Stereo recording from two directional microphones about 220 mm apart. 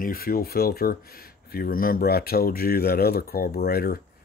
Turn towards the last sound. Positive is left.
turn(degrees=45)  # may be behind; listen again after turning